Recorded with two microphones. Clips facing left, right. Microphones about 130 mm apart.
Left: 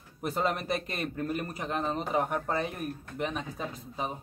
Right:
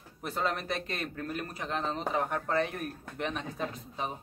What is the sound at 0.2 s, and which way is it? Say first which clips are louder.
A man's voice: left 3 dB; 15° left (ahead or behind).